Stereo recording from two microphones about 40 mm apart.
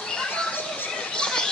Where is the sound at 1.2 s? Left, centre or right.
Centre.